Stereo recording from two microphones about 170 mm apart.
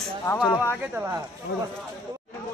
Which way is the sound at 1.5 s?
65° left (ahead or behind).